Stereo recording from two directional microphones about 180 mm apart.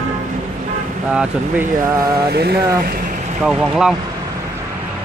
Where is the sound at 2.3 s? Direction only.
60° right (ahead or behind).